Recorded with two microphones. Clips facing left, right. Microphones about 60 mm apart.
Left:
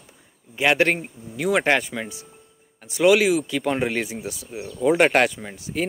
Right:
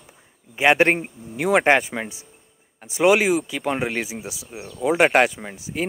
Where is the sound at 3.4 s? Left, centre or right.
Centre.